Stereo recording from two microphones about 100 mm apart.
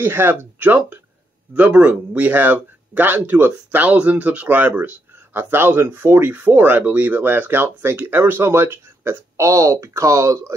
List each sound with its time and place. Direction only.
0.0 s speech: 20° right (ahead or behind)